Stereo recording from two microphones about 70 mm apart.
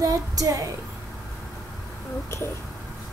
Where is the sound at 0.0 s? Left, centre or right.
Right.